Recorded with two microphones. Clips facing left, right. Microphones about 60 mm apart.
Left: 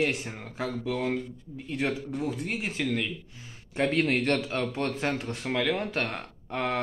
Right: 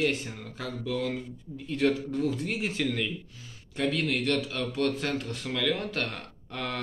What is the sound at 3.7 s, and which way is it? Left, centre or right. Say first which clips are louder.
A man's voice: left 3 dB; left.